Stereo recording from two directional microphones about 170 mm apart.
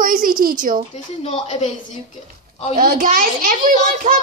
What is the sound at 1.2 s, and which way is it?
Speech, 35° left (ahead or behind).